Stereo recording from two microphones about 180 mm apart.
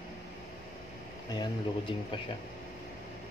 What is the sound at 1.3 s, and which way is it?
Speech, 25° left (ahead or behind).